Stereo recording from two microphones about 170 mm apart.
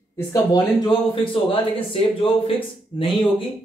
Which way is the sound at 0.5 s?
25° left (ahead or behind).